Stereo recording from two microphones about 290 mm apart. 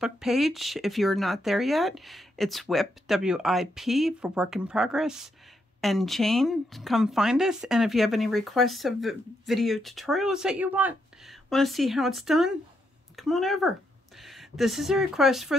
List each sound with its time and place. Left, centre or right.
0.0 s speech: centre